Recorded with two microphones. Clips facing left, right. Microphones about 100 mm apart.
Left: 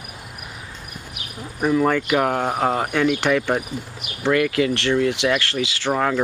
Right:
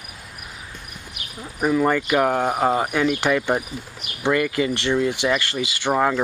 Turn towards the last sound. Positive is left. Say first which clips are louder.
# right 1 dB
turn(degrees=-10)  # may be behind; listen again after turning